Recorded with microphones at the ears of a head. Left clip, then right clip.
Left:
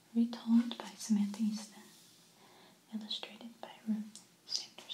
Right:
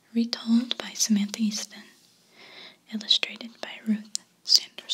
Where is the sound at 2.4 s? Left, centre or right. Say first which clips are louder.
Right 18 dB; right.